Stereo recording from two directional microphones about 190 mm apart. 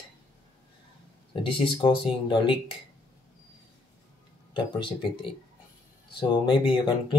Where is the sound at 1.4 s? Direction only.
25° left (ahead or behind).